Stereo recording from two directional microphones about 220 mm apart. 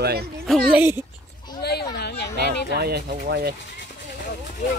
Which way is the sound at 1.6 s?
45° left (ahead or behind).